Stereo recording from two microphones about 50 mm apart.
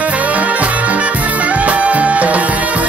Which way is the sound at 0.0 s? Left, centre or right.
Right.